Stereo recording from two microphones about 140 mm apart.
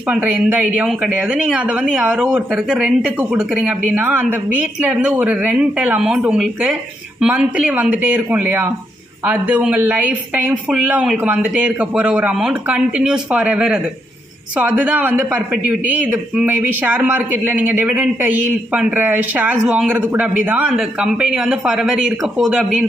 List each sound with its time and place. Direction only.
0.1 s a man's voice: 10° right (ahead or behind)